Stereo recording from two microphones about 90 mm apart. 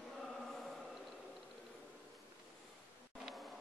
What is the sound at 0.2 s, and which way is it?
Chant, 5° left (ahead or behind).